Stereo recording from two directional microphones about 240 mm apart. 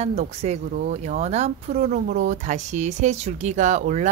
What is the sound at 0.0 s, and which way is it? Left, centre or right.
Speech, right.